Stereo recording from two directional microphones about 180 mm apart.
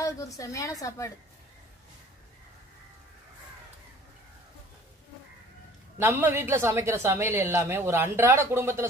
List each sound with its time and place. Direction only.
0.0 s a woman's voice: 20° left (ahead or behind)
5.9 s a woman's voice: 10° right (ahead or behind)